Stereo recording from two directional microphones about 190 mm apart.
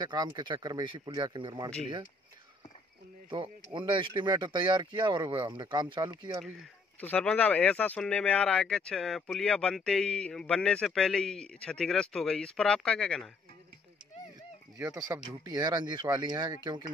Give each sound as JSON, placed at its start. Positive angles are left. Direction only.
{"t": 0.0, "sound": "speech", "side_deg": -25}
{"t": 3.7, "sound": "speech", "side_deg": -25}
{"t": 6.4, "sound": "speech", "side_deg": 0}
{"t": 14.8, "sound": "speech", "side_deg": -20}